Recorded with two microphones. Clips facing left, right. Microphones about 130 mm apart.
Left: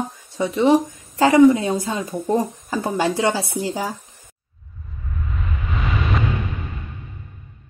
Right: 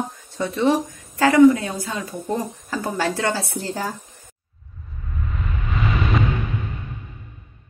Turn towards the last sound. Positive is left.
turn(degrees=0)  # may be behind; listen again after turning